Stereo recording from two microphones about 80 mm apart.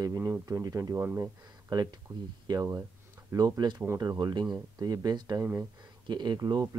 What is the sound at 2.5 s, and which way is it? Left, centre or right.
Speech, right.